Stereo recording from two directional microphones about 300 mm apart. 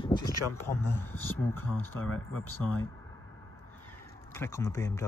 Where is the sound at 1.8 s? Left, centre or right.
Left.